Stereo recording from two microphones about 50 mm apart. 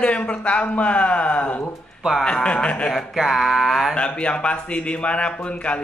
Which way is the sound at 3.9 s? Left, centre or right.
Left.